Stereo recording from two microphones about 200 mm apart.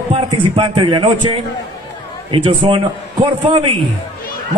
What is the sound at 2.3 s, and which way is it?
A man's voice, 25° right (ahead or behind).